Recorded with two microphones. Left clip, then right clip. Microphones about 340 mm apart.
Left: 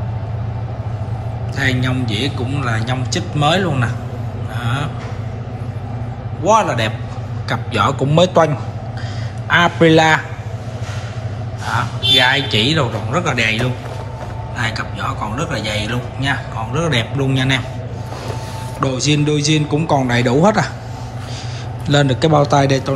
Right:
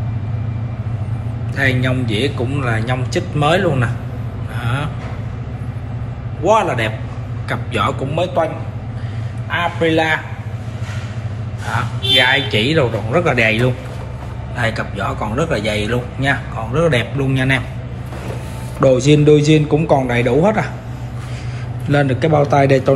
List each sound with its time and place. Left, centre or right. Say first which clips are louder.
1.6 s a man's voice: right 2 dB; centre
4.6 s a sound: even; centre
6.4 s a man's voice: even; centre
9.5 s a man's voice: left 5 dB; centre
12.2 s a man's voice: right 2 dB; centre
18.8 s a man's voice: right 6 dB; centre
21.8 s a man's voice: left 1 dB; centre